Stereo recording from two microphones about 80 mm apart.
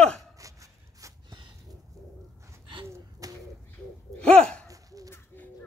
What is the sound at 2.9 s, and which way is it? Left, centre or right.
Gasp, right.